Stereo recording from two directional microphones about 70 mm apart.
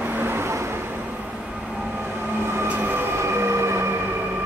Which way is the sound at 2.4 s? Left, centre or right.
Right.